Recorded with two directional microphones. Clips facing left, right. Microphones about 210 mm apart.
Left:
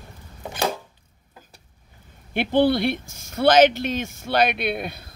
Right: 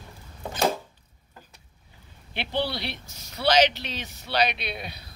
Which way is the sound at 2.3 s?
50° left (ahead or behind).